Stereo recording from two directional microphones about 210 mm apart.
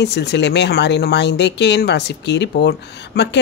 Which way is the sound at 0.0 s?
55° left (ahead or behind).